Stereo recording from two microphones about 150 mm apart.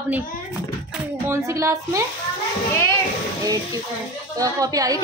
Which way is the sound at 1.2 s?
20° right (ahead or behind).